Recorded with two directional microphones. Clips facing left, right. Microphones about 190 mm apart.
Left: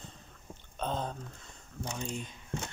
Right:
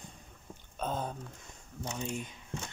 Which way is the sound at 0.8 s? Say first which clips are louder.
Left 1 dB; 10° right (ahead or behind).